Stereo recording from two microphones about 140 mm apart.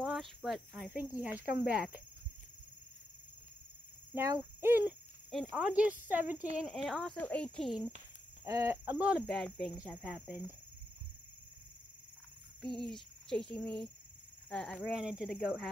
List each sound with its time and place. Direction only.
0.0 s speech: centre (ahead or behind)
0.9 s speech: 10° right (ahead or behind)
4.1 s speech: 20° right (ahead or behind)
5.3 s speech: centre (ahead or behind)
6.5 s speech: centre (ahead or behind)
8.5 s speech: 20° right (ahead or behind)
9.2 s a sound: 5° left (ahead or behind)
10.0 s speech: 10° right (ahead or behind)
12.6 s a sound: 5° left (ahead or behind)
14.8 s speech: 5° right (ahead or behind)